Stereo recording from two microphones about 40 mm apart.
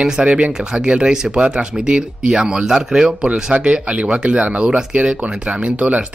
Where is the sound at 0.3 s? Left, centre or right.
Right.